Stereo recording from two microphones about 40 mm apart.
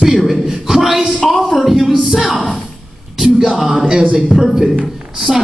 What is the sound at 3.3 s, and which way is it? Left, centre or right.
Speech, centre.